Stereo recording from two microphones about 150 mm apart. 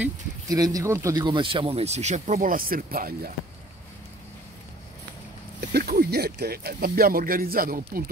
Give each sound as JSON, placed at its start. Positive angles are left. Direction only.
{"t": 0.5, "sound": "speech", "side_deg": -25}
{"t": 2.4, "sound": "speech", "side_deg": -70}
{"t": 5.6, "sound": "speech", "side_deg": -90}